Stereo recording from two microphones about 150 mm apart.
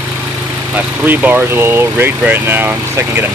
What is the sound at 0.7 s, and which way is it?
Speech, 10° right (ahead or behind).